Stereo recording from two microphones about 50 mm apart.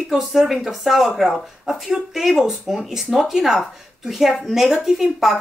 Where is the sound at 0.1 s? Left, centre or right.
Centre.